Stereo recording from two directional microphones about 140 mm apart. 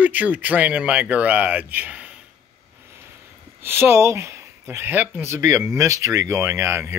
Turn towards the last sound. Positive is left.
turn(degrees=-20)  # may be behind; listen again after turning